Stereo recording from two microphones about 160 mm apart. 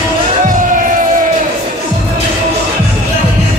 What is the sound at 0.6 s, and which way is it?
Music, 55° right (ahead or behind).